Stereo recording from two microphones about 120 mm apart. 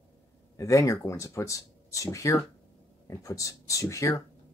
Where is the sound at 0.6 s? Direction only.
25° left (ahead or behind).